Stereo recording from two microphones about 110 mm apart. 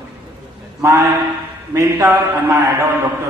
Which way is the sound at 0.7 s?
30° right (ahead or behind).